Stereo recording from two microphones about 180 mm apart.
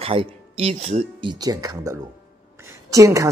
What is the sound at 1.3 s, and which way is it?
A man's voice, 20° right (ahead or behind).